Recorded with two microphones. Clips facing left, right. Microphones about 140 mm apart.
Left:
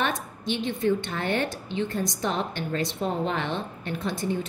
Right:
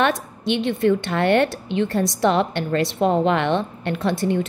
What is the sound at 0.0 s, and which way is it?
A woman's voice, 70° right (ahead or behind).